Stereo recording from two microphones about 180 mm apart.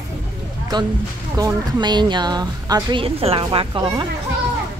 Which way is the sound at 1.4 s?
25° right (ahead or behind).